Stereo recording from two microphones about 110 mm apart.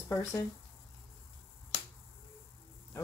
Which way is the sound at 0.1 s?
30° left (ahead or behind).